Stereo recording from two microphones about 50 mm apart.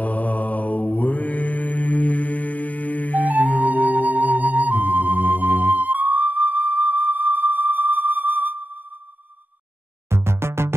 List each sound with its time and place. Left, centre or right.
0.0 s mantra: left
3.5 s music: right
10.0 s music: right